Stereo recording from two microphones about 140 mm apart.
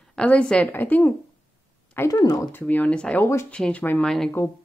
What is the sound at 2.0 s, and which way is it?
Speech, 25° left (ahead or behind).